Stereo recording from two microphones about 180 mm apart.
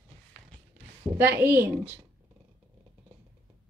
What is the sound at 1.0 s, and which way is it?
Speech, 10° right (ahead or behind).